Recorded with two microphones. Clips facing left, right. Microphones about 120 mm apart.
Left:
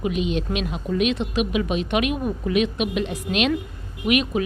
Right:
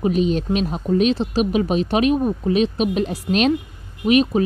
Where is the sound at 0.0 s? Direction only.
40° right (ahead or behind).